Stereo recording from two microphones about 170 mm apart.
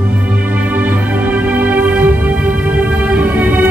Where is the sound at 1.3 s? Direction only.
10° right (ahead or behind).